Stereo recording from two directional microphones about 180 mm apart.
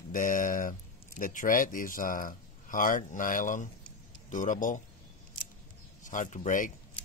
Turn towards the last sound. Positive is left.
turn(degrees=45)  # may be behind; listen again after turning